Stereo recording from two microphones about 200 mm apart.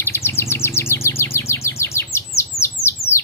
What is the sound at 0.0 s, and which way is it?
Chirp, 10° left (ahead or behind).